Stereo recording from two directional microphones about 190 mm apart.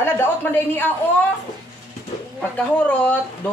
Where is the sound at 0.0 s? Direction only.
10° left (ahead or behind).